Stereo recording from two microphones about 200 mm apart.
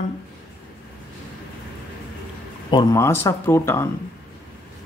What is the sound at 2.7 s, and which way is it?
Speech, 20° left (ahead or behind).